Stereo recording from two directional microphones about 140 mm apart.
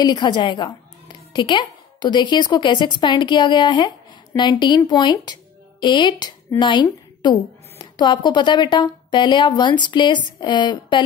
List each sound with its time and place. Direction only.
0.0 s a woman's voice: 30° left (ahead or behind)